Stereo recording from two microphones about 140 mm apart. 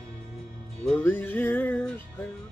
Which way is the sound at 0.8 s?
10° left (ahead or behind).